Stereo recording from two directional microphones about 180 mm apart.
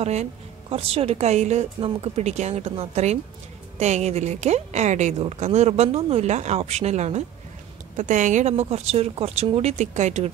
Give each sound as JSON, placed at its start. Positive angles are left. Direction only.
{"t": 0.0, "sound": "speech", "side_deg": -35}